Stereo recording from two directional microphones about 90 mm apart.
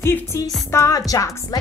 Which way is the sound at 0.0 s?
30° left (ahead or behind).